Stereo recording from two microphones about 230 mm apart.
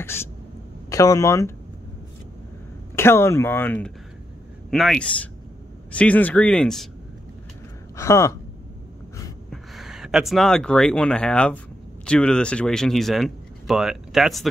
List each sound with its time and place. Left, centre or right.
0.0 s speech: centre
3.0 s speech: centre
7.9 s speech: centre
9.5 s speech: centre